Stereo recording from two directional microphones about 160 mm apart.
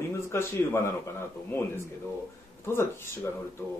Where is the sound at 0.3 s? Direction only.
15° left (ahead or behind).